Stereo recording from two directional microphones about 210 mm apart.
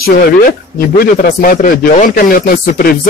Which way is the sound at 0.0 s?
45° left (ahead or behind).